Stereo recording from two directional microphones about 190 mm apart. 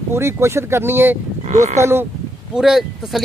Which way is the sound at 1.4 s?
35° right (ahead or behind).